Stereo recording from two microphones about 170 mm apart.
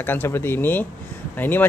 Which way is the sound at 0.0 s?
10° left (ahead or behind).